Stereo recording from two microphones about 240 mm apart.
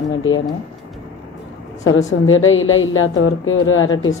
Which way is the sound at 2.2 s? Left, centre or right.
Left.